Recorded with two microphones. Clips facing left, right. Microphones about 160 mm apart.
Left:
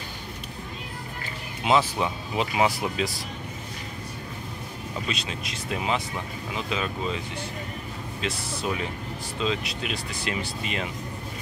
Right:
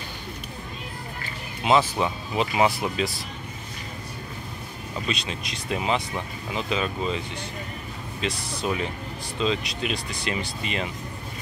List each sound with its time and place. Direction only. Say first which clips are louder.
1.6 s speech: right 2 dB; 5° left (ahead or behind)
5.0 s speech: right 4 dB; 10° left (ahead or behind)
8.2 s speech: right 2 dB; 5° left (ahead or behind)